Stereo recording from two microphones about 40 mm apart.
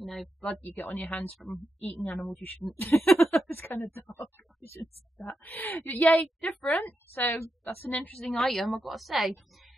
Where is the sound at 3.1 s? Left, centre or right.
Left.